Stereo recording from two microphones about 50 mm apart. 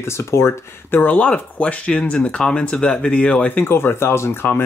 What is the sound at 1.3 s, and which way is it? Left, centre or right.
Speech, left.